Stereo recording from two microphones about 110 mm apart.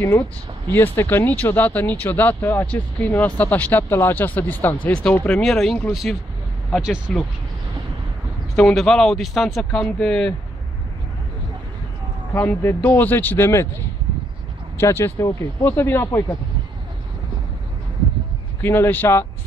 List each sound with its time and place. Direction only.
0.7 s speech: 20° left (ahead or behind)
8.5 s speech: 5° left (ahead or behind)
12.4 s speech: 20° left (ahead or behind)
14.8 s speech: 25° left (ahead or behind)
18.6 s speech: 20° left (ahead or behind)